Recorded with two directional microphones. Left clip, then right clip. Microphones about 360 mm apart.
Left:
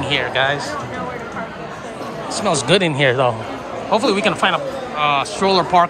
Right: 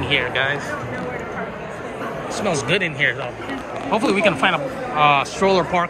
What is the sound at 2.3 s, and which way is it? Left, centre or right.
Speech, centre.